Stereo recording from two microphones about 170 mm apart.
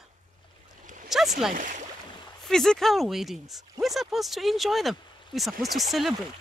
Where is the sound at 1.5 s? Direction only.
50° right (ahead or behind).